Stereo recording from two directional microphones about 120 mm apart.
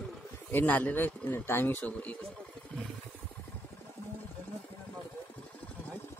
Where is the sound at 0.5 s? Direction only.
15° left (ahead or behind).